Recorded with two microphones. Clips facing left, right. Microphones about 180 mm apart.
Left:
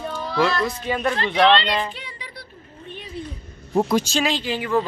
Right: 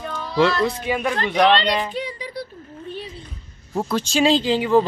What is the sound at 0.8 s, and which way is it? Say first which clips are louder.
Speech: right 1 dB; 10° right (ahead or behind).